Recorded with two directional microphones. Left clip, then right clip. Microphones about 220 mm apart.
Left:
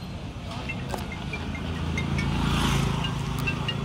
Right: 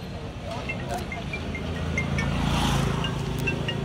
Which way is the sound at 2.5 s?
10° left (ahead or behind).